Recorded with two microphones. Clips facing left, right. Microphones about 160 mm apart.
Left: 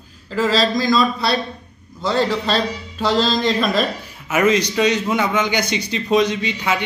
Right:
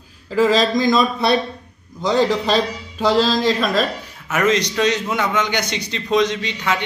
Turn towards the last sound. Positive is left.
turn(degrees=5)  # may be behind; listen again after turning